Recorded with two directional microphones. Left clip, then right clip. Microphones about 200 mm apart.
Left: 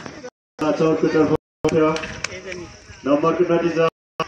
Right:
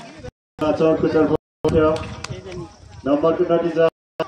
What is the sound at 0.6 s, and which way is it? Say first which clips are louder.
Speech: right 1 dB; 15° left (ahead or behind).